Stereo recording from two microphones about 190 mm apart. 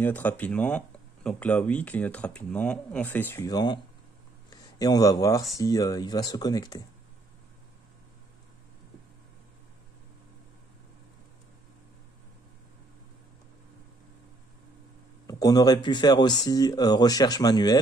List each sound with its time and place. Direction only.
0.0 s speech: 10° left (ahead or behind)
15.2 s speech: 20° left (ahead or behind)